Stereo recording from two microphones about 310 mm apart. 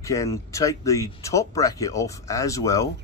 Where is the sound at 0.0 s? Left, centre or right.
Centre.